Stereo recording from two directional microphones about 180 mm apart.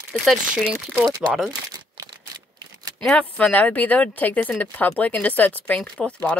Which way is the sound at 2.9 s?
5° left (ahead or behind).